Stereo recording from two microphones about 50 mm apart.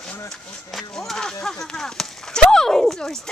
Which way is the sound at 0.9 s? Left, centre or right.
Centre.